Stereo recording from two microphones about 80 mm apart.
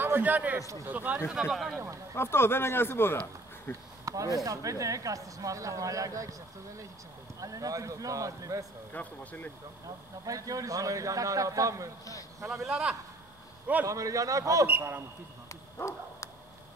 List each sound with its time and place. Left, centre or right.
0.0 s a man's voice: right
1.3 s speech: centre
2.1 s a man's voice: left
4.0 s a sound: right
4.5 s a man's voice: right
7.3 s a man's voice: right
8.9 s a man's voice: centre
9.8 s a man's voice: right
12.6 s a man's voice: centre
13.8 s a man's voice: right
14.7 s speech: right
15.8 s a man's voice: left